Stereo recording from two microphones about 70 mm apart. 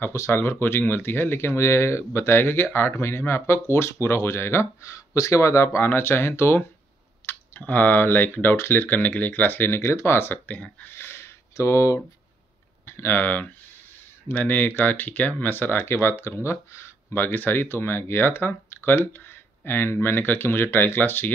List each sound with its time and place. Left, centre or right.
0.3 s speech: left
5.9 s speech: left
7.2 s speech: left
11.0 s a sound: left
12.8 s speech: left
17.2 s speech: left